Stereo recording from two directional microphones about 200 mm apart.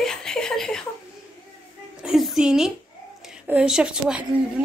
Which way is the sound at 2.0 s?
Centre (ahead or behind).